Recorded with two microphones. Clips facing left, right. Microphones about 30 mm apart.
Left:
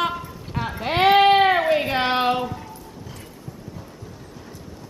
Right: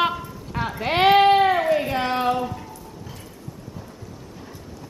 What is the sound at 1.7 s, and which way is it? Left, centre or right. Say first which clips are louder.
Speech: left 1 dB; left.